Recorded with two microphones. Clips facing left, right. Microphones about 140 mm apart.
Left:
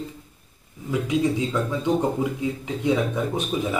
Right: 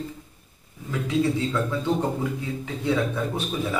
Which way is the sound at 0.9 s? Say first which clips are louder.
Left 1 dB; 15° left (ahead or behind).